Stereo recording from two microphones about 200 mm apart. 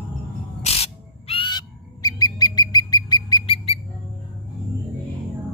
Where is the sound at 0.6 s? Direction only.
30° left (ahead or behind).